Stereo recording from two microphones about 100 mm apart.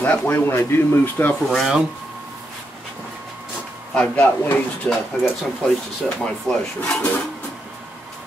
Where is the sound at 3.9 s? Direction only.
10° left (ahead or behind).